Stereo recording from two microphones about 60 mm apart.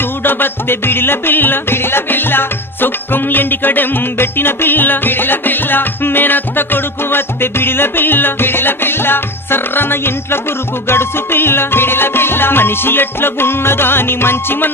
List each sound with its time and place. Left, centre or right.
0.2 s music: left